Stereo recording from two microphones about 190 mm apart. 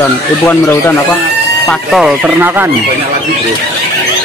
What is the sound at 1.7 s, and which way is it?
Speech, centre (ahead or behind).